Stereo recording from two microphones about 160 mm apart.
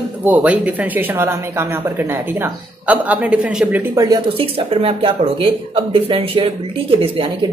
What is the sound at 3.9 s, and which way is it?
Speech, 25° right (ahead or behind).